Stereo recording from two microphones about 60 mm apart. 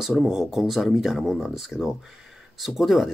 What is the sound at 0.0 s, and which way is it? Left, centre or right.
Speech, centre.